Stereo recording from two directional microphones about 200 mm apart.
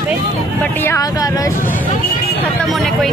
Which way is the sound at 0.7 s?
15° left (ahead or behind).